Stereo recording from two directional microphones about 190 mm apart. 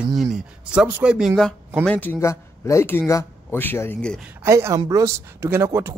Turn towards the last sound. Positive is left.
turn(degrees=-15)  # may be behind; listen again after turning